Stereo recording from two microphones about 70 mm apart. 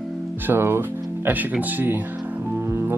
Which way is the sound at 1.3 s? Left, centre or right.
Right.